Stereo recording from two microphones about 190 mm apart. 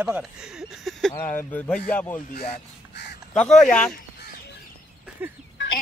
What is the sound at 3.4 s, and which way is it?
Speech, centre (ahead or behind).